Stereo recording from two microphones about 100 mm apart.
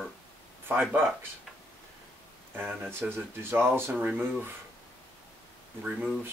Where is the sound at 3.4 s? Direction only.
25° right (ahead or behind).